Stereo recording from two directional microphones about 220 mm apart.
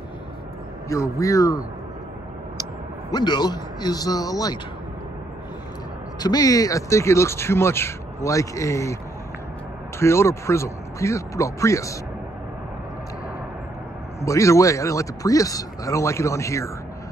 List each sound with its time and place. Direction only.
0.8 s speech: 15° left (ahead or behind)
3.1 s speech: 20° left (ahead or behind)
6.1 s speech: 15° left (ahead or behind)
9.9 s speech: 10° left (ahead or behind)
14.2 s speech: 15° left (ahead or behind)